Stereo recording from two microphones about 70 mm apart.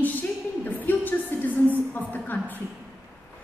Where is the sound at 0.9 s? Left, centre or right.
Left.